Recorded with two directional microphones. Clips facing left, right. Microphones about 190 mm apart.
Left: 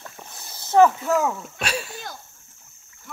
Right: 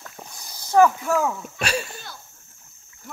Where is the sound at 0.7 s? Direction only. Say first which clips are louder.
Left 1 dB; 20° left (ahead or behind).